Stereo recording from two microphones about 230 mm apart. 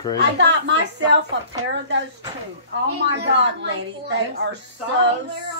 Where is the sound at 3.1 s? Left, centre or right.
Right.